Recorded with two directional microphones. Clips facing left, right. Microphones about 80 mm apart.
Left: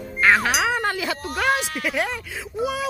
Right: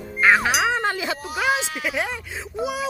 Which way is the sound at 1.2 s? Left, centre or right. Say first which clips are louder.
Left 1 dB; centre.